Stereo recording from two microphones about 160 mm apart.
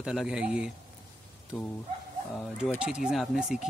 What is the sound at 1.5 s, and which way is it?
Speech, 5° left (ahead or behind).